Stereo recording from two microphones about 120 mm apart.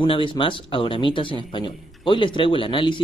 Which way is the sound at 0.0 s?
45° left (ahead or behind).